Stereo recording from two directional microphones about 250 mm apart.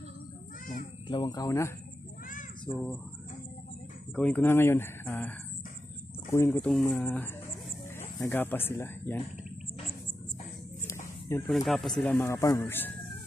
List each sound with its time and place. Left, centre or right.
1.0 s speech: centre
4.1 s speech: centre
6.3 s speech: centre
11.2 s speech: centre